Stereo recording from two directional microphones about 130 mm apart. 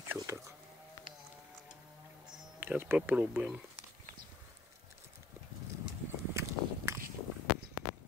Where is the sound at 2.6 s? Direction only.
15° right (ahead or behind).